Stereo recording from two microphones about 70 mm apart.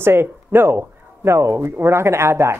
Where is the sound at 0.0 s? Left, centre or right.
Right.